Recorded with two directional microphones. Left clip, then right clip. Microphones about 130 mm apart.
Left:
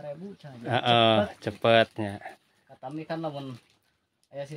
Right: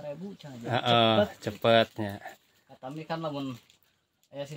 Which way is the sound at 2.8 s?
10° right (ahead or behind).